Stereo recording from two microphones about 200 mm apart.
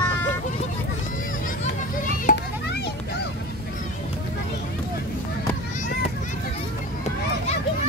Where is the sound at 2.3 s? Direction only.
40° left (ahead or behind).